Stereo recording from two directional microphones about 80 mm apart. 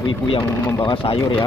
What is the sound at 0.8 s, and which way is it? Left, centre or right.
Speech, left.